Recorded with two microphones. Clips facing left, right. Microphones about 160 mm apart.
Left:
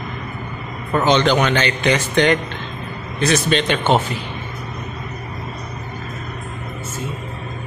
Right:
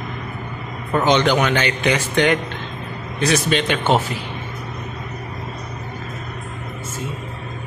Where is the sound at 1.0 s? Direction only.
15° right (ahead or behind).